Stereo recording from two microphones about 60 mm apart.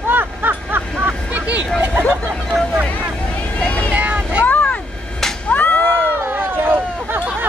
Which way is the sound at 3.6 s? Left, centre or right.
Left.